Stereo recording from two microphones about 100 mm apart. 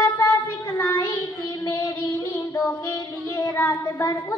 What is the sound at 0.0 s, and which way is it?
Child singing, 25° left (ahead or behind).